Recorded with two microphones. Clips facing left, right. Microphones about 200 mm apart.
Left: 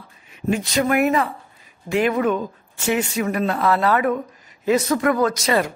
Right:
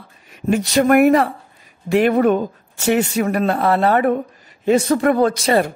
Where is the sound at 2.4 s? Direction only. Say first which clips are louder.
Right 5 dB; 40° right (ahead or behind).